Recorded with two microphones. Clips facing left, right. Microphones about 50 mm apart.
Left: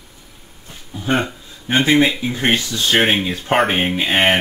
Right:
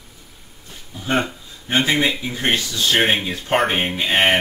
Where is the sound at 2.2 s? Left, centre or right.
Left.